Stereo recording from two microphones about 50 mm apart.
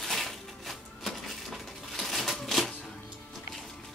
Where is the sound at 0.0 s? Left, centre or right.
Centre.